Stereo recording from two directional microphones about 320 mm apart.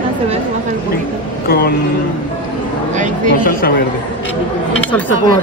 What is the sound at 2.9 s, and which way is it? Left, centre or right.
Speech, right.